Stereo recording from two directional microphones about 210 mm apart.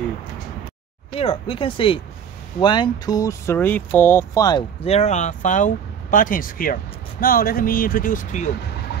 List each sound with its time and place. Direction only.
1.1 s speech: 30° left (ahead or behind)